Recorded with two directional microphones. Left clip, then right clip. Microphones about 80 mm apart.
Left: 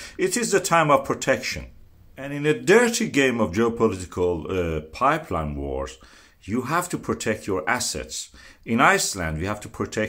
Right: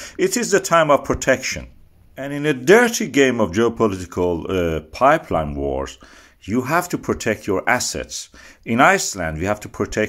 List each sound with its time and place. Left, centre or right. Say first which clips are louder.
0.0 s speech: right 4 dB; right